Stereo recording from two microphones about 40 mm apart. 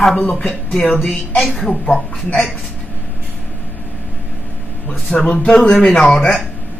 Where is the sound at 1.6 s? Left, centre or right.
Centre.